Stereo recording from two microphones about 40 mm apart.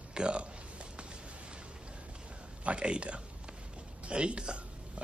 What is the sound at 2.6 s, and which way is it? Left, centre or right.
Speech, right.